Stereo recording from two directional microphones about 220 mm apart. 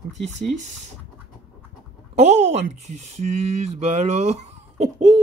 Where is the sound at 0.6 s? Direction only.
35° right (ahead or behind).